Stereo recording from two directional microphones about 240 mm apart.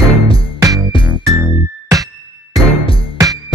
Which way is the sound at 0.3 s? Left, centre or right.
Left.